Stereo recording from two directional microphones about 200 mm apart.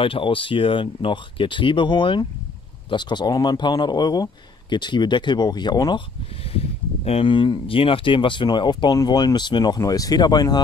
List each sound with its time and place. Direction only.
0.0 s speech: 25° left (ahead or behind)
7.1 s speech: 25° left (ahead or behind)